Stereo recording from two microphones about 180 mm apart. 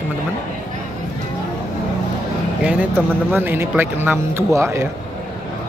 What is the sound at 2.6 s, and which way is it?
Speech, 10° right (ahead or behind).